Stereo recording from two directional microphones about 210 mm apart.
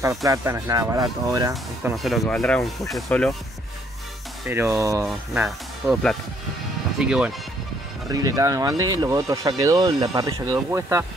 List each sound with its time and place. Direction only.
0.0 s speech: 15° right (ahead or behind)
1.5 s speech: 5° right (ahead or behind)
4.7 s speech: 15° right (ahead or behind)
5.0 s speech: 5° right (ahead or behind)
8.1 s speech: 15° right (ahead or behind)